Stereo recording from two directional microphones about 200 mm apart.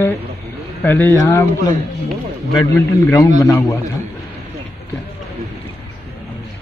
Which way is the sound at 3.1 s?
15° left (ahead or behind).